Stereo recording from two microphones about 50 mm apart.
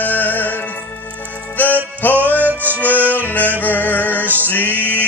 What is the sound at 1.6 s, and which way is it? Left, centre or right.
Music, left.